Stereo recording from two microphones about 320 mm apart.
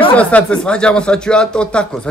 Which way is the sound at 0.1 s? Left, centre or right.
Centre.